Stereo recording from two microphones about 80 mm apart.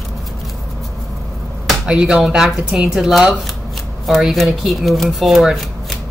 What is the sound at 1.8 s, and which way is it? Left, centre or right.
Speech, centre.